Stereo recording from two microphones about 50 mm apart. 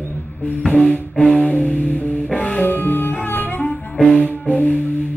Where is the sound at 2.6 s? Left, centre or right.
Left.